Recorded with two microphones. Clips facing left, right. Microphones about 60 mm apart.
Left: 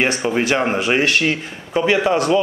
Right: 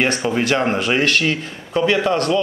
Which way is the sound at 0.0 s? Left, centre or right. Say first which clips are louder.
Even; centre.